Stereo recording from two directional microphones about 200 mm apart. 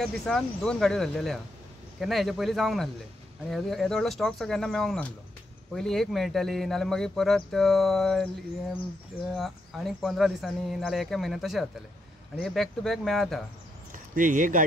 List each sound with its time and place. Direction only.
0.0 s speech: centre (ahead or behind)
9.3 s speech: centre (ahead or behind)
13.9 s speech: 40° right (ahead or behind)